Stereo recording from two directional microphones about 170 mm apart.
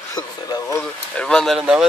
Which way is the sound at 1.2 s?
5° left (ahead or behind).